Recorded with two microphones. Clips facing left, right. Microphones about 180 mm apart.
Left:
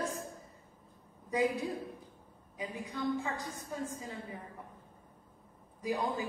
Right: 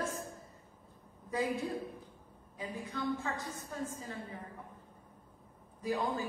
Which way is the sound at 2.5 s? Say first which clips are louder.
Left 1 dB; 15° left (ahead or behind).